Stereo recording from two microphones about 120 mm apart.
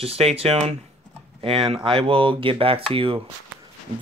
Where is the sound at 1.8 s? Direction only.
50° right (ahead or behind).